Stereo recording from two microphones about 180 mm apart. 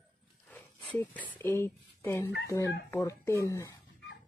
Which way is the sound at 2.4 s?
15° left (ahead or behind).